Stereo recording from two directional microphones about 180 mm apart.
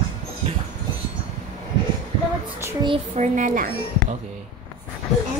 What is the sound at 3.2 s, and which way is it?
Speech, 45° right (ahead or behind).